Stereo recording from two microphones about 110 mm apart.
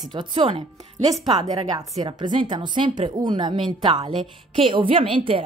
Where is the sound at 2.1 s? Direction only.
40° right (ahead or behind).